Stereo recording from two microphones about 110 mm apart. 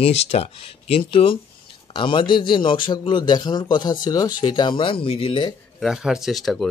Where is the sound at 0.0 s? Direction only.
70° left (ahead or behind).